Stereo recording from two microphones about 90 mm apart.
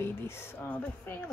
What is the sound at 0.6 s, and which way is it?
Speech, 15° left (ahead or behind).